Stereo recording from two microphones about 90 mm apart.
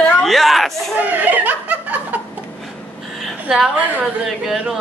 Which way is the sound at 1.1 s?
20° right (ahead or behind).